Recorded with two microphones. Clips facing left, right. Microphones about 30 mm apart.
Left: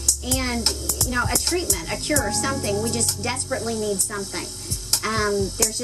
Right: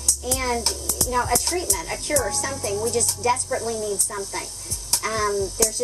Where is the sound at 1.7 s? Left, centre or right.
Left.